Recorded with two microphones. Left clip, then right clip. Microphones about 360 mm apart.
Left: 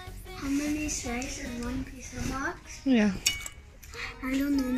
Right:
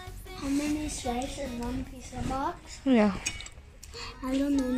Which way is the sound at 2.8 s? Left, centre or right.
Right.